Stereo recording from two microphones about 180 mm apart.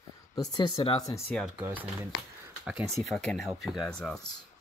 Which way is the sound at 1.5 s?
10° right (ahead or behind).